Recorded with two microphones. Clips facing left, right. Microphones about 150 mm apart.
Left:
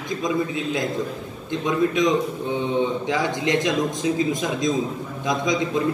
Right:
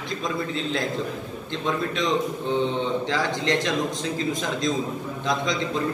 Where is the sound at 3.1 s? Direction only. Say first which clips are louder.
Left 2 dB; 15° left (ahead or behind).